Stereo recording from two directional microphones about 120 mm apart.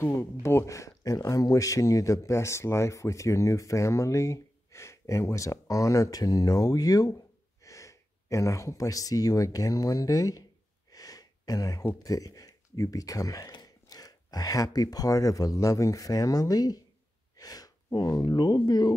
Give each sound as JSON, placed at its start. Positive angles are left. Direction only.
{"t": 0.0, "sound": "speech", "side_deg": 20}
{"t": 10.9, "sound": "a sound", "side_deg": 30}
{"t": 12.0, "sound": "speech", "side_deg": 30}